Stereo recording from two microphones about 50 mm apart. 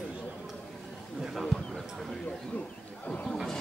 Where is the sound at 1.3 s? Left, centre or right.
Centre.